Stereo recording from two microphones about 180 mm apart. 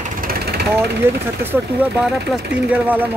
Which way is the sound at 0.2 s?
60° right (ahead or behind).